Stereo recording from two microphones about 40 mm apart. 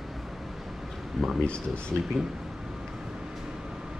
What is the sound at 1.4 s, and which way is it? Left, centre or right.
Speech, left.